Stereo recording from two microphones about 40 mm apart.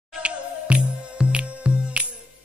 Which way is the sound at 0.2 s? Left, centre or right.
Right.